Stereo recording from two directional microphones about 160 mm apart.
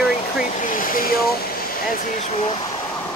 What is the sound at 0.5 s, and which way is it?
Speech, 55° left (ahead or behind).